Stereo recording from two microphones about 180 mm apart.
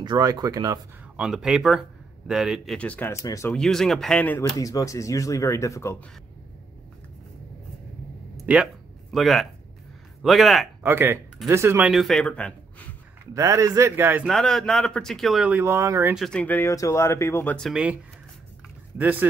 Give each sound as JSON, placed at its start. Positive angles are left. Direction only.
{"t": 0.0, "sound": "speech", "side_deg": -20}
{"t": 1.1, "sound": "speech", "side_deg": -5}
{"t": 3.5, "sound": "speech", "side_deg": 0}
{"t": 9.1, "sound": "speech", "side_deg": 0}
{"t": 10.8, "sound": "speech", "side_deg": -10}
{"t": 11.9, "sound": "speech", "side_deg": 0}
{"t": 13.3, "sound": "speech", "side_deg": -20}
{"t": 14.2, "sound": "speech", "side_deg": 0}
{"t": 16.2, "sound": "speech", "side_deg": 5}
{"t": 18.9, "sound": "speech", "side_deg": -10}